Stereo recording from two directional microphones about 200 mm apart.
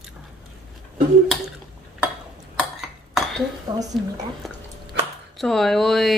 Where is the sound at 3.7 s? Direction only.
20° right (ahead or behind).